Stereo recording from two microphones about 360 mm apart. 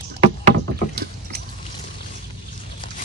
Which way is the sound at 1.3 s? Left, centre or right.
Right.